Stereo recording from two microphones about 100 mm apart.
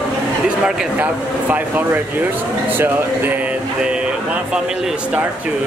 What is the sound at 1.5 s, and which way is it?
Speech, 15° right (ahead or behind).